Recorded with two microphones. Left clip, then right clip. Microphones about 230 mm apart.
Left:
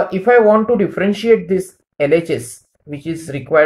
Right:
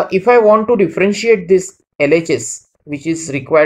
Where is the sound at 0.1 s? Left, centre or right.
Right.